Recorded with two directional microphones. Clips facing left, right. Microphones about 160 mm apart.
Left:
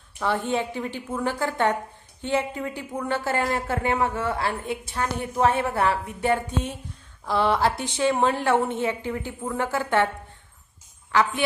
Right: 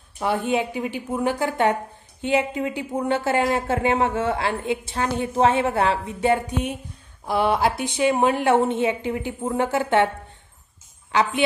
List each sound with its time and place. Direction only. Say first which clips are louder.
0.2 s a woman's voice: right 2 dB; 10° right (ahead or behind)
11.1 s a woman's voice: right 1 dB; 20° right (ahead or behind)